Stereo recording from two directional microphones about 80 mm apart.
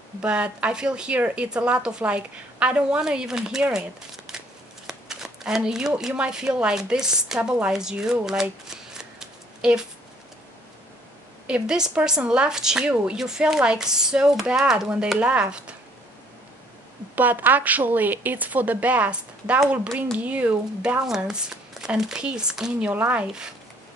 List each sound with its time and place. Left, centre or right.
0.2 s speech: centre
11.4 s speech: centre
17.1 s a woman's voice: right
21.0 s speech: centre